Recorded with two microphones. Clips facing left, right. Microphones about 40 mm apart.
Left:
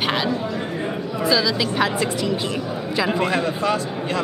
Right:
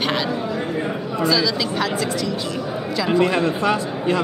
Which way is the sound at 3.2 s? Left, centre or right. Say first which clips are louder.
Right 2 dB; centre.